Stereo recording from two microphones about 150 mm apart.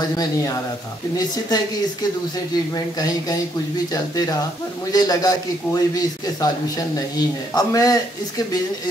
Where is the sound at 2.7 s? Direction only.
25° left (ahead or behind).